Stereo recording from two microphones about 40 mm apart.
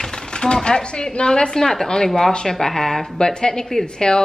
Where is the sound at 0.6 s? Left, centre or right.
Left.